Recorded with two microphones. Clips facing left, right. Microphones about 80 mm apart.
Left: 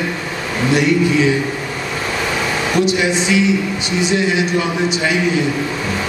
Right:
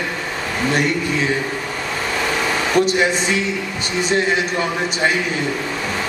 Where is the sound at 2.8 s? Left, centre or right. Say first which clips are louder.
Left 2 dB; right.